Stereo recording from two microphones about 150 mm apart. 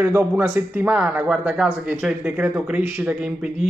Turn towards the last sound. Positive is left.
turn(degrees=-10)  # may be behind; listen again after turning